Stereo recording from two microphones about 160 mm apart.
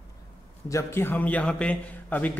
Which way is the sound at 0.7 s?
15° left (ahead or behind).